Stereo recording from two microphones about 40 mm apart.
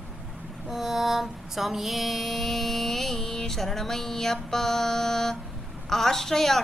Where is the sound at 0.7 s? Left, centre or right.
Centre.